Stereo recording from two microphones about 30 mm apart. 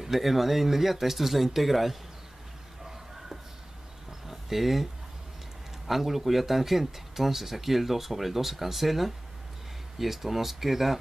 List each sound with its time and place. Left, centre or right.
0.0 s speech: centre
4.3 s a sound: centre
5.9 s speech: centre